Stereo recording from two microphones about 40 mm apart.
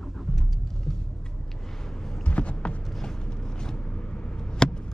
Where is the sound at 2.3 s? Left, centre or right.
Left.